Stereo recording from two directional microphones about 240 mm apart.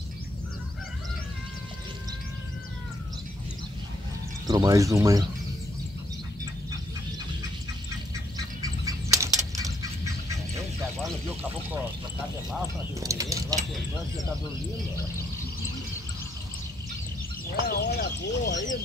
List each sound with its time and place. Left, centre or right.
4.5 s speech: centre
8.6 s bird flight: centre
13.0 s speech: centre
17.6 s a sound: left